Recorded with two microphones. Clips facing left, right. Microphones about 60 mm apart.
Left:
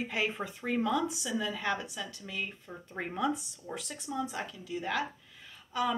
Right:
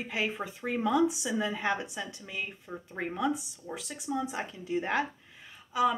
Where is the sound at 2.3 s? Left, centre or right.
Centre.